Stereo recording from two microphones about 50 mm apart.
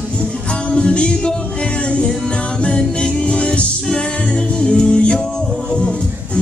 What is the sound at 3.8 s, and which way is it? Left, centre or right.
Music, centre.